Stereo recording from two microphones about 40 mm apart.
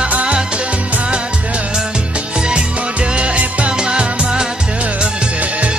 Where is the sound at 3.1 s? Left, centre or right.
Right.